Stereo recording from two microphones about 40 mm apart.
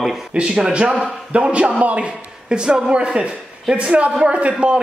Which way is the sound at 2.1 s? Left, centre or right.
Right.